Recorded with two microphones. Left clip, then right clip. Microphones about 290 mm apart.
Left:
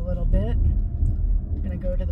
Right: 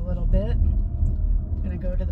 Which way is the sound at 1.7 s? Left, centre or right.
Centre.